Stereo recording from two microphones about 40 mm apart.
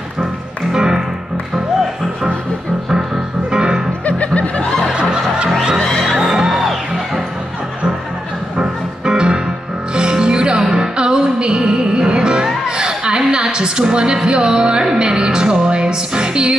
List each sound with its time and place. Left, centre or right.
0.7 s music: centre
3.5 s music: centre
6.1 s music: centre
8.5 s music: right
12.7 s a sound: right